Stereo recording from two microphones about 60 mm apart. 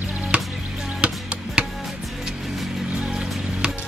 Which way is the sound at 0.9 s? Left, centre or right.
Centre.